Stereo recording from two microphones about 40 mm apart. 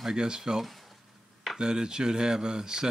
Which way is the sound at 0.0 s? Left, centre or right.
Centre.